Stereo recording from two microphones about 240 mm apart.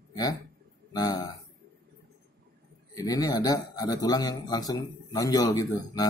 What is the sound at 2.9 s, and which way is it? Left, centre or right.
A man's voice, centre.